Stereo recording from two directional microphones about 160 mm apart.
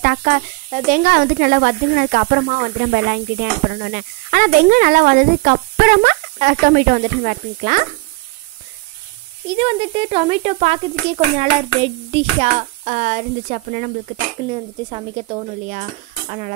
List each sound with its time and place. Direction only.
0.0 s speech: 55° right (ahead or behind)
9.5 s speech: 35° right (ahead or behind)
11.3 s hands: 40° right (ahead or behind); by 13.9 s 55° right (ahead or behind)
14.5 s speech: 35° right (ahead or behind)
16.3 s speech: 45° right (ahead or behind)